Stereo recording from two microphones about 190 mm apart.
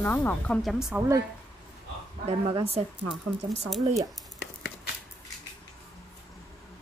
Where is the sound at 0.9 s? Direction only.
5° right (ahead or behind).